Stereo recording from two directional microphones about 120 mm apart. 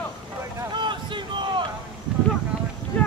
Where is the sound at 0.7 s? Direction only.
40° right (ahead or behind).